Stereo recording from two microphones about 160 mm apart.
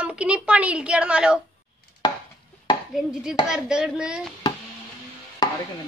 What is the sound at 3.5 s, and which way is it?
Speech, 5° right (ahead or behind).